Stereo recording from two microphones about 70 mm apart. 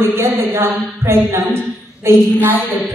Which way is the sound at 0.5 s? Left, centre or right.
Right.